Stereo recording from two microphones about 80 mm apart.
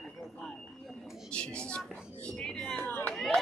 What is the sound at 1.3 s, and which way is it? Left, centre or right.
Speech, centre.